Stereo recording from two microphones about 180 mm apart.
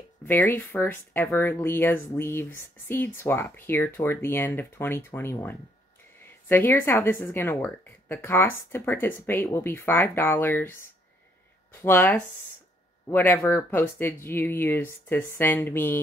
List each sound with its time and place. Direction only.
0.3 s speech: 15° left (ahead or behind)